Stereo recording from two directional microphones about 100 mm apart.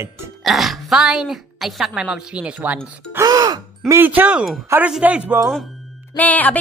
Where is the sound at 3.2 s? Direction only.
40° right (ahead or behind).